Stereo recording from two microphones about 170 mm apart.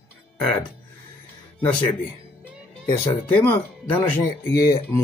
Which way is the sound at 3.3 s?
10° left (ahead or behind).